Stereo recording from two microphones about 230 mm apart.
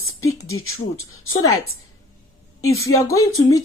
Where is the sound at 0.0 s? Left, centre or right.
Left.